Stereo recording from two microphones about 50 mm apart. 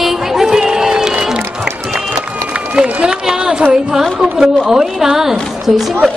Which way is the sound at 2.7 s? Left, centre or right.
Centre.